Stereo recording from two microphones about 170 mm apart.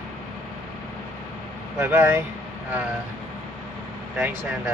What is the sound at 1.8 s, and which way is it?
Speech, 15° right (ahead or behind).